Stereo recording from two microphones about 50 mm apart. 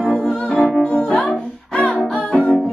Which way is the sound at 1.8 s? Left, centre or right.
Left.